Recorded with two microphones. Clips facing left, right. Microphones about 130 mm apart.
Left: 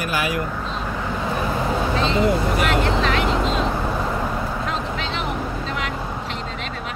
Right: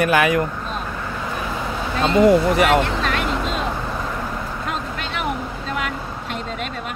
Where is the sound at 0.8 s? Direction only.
15° left (ahead or behind).